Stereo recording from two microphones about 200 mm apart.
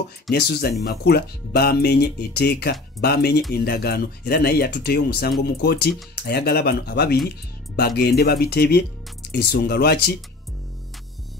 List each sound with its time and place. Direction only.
0.3 s speech: 55° left (ahead or behind)